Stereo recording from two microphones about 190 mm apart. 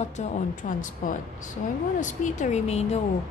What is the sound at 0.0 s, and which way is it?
A woman's voice, 40° left (ahead or behind).